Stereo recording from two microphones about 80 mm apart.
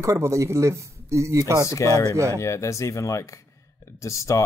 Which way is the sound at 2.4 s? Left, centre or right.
Left.